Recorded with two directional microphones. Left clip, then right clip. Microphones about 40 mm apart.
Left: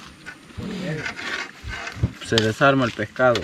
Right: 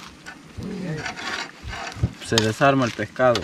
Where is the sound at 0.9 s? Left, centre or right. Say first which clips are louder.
Even; centre.